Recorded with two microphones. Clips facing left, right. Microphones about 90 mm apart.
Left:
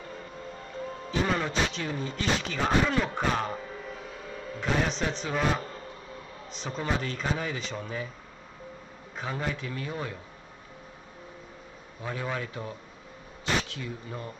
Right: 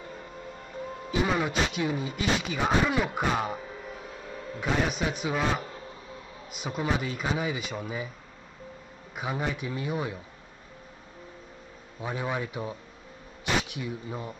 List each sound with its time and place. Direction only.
0.0 s speech: 10° right (ahead or behind)
9.1 s speech: 15° right (ahead or behind)
12.0 s speech: 15° right (ahead or behind)